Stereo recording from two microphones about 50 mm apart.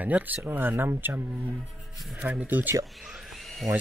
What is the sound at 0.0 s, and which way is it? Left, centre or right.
Speech, right.